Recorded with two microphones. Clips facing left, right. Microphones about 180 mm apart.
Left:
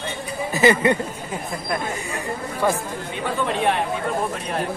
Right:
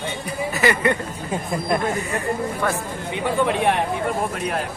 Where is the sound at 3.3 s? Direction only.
15° right (ahead or behind).